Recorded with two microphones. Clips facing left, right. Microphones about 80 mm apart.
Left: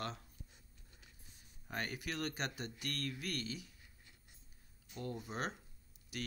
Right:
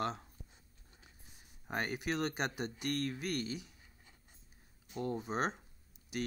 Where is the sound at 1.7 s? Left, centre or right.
Right.